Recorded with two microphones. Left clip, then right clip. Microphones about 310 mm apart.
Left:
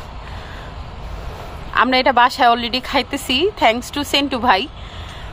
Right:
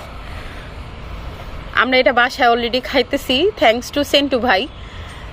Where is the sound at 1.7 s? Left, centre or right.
Centre.